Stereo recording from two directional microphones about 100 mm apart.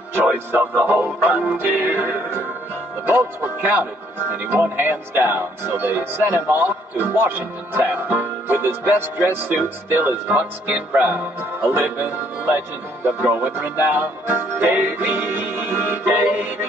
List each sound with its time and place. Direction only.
0.1 s speech: 20° right (ahead or behind)